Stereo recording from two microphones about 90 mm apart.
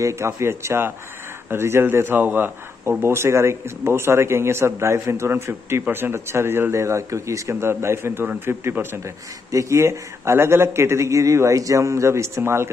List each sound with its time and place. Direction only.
0.0 s speech: 30° right (ahead or behind)